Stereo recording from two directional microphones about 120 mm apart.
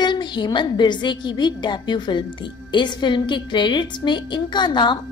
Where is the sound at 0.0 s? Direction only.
40° left (ahead or behind).